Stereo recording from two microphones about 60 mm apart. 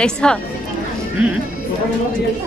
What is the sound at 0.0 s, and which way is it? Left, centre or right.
Speech, centre.